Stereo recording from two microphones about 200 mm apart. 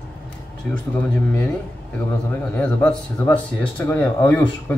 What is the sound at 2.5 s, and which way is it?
Speech, 5° left (ahead or behind).